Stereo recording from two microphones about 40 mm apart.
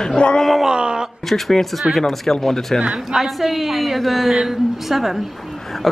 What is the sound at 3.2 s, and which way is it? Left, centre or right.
A woman's voice, centre.